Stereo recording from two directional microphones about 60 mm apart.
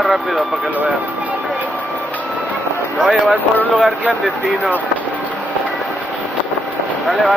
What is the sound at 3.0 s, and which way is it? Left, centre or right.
Speech, centre.